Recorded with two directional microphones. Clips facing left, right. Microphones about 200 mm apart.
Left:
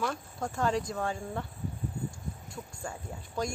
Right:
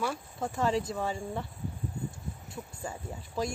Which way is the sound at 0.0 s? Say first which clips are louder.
Even; 5° right (ahead or behind).